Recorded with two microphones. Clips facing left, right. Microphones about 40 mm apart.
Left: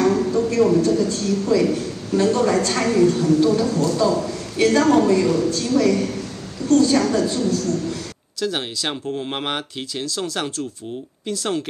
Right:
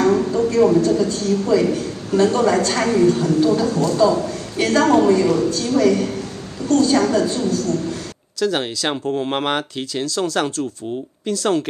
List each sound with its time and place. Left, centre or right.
0.0 s a sound: right
0.6 s a woman's voice: right
8.5 s speech: centre